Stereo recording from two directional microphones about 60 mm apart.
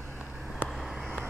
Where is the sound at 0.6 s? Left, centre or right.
Centre.